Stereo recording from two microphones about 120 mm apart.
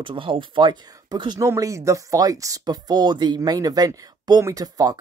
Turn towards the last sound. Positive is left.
turn(degrees=-30)  # may be behind; listen again after turning